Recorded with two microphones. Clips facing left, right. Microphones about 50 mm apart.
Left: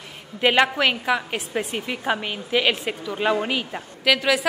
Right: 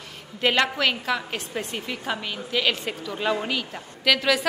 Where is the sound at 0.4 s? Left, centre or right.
Centre.